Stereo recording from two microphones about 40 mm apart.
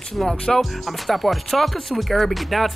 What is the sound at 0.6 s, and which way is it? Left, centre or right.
Speech, centre.